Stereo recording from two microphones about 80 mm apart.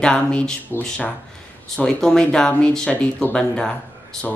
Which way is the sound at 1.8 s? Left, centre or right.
Centre.